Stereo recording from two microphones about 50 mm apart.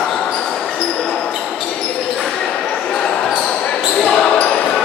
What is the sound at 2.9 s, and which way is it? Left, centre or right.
Basketball bounce, centre.